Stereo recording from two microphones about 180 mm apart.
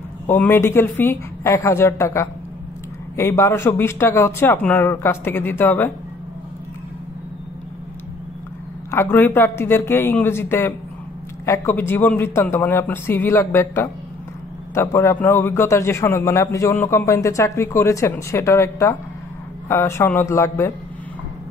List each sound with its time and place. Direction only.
0.3 s a man's voice: 10° left (ahead or behind)
8.9 s a man's voice: 10° left (ahead or behind)